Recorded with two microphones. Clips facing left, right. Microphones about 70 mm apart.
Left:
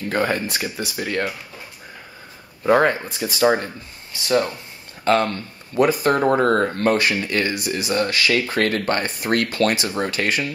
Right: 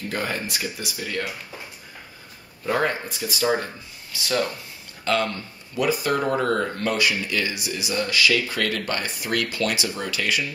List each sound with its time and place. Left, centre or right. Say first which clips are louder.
0.1 s speech: left 7 dB; left
2.7 s speech: left 7 dB; left
3.6 s speech: left 3 dB; left
5.0 s speech: left 5 dB; left